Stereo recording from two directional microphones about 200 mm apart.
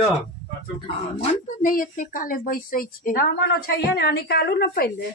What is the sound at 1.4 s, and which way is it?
A woman's voice, 40° left (ahead or behind).